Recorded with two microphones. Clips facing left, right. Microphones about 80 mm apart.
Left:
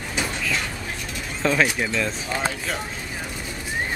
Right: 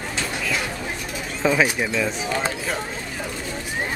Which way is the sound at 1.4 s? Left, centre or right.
Centre.